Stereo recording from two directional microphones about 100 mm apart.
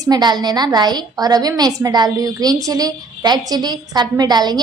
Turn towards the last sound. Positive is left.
turn(degrees=-45)  # may be behind; listen again after turning